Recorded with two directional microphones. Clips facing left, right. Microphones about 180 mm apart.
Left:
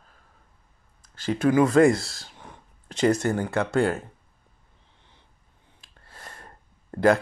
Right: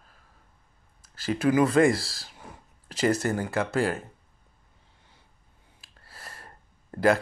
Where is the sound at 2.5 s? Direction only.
5° right (ahead or behind).